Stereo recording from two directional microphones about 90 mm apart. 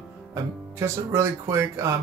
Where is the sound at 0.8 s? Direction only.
30° right (ahead or behind).